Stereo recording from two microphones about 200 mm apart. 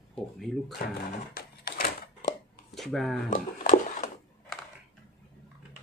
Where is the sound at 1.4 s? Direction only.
50° left (ahead or behind).